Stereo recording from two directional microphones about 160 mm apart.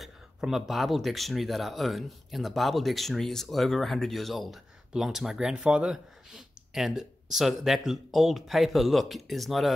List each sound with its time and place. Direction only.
0.0 s speech: centre (ahead or behind)